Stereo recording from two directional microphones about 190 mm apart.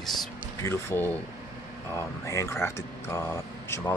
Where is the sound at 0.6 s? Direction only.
10° left (ahead or behind).